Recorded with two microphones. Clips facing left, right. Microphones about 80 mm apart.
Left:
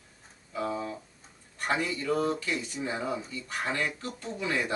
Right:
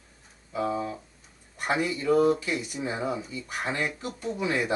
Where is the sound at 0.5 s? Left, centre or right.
Centre.